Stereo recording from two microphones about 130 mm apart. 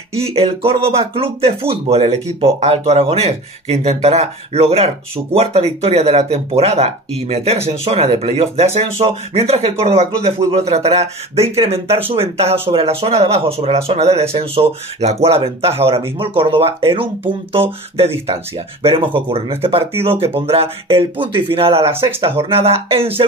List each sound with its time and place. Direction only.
0.1 s speech: 50° right (ahead or behind)